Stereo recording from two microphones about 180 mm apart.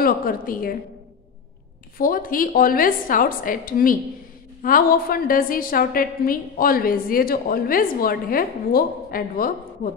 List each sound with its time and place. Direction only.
0.0 s a woman's voice: 50° left (ahead or behind)
2.0 s a woman's voice: 50° left (ahead or behind)